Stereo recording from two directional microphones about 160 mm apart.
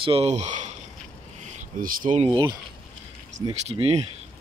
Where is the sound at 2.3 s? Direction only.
30° right (ahead or behind).